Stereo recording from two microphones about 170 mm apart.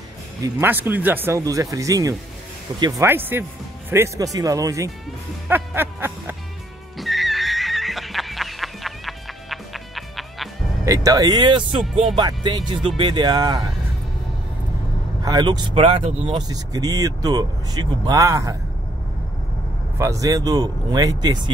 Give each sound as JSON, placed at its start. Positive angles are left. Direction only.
{"t": 0.4, "sound": "speech", "side_deg": -10}
{"t": 5.5, "sound": "music", "side_deg": -10}
{"t": 7.0, "sound": "music", "side_deg": 0}
{"t": 10.9, "sound": "speech", "side_deg": -20}
{"t": 15.2, "sound": "speech", "side_deg": -25}
{"t": 16.3, "sound": "speech", "side_deg": -25}
{"t": 20.0, "sound": "speech", "side_deg": -20}